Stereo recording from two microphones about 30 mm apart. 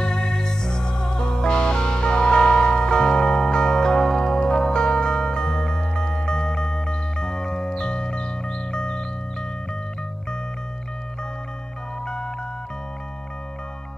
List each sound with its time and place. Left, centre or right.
0.0 s music: left